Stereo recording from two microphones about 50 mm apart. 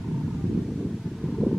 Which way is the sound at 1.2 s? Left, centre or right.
Centre.